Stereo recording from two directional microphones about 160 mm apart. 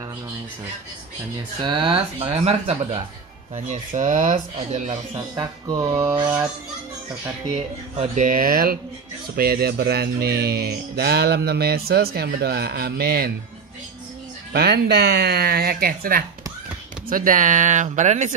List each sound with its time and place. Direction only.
1.6 s speech: 30° right (ahead or behind); by 4.9 s 50° right (ahead or behind)
5.1 s speech: 25° right (ahead or behind)
7.5 s speech: 40° right (ahead or behind)
8.3 s speech: 65° right (ahead or behind)
9.4 s music: 75° right (ahead or behind)
14.5 s speech: 85° right; by 18.3 s 50° right (ahead or behind)